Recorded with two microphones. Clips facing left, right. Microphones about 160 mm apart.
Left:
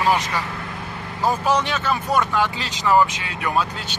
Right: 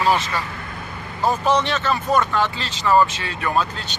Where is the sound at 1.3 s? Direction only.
10° left (ahead or behind).